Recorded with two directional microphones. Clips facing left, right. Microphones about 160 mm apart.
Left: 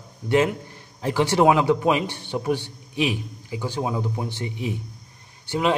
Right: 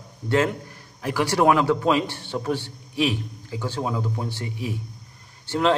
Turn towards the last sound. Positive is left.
turn(degrees=10)  # may be behind; listen again after turning